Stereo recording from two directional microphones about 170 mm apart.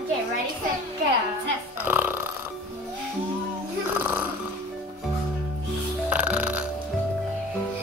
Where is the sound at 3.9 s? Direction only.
10° right (ahead or behind).